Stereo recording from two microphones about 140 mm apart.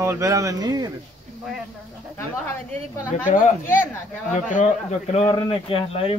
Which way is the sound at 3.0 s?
70° left (ahead or behind).